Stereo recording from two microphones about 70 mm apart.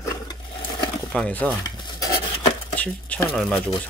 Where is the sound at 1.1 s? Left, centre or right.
Centre.